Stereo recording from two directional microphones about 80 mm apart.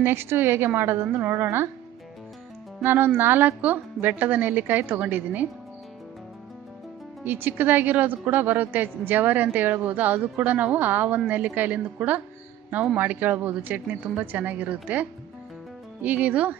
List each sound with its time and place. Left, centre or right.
0.0 s a woman's voice: right
2.8 s a woman's voice: right
7.2 s a woman's voice: right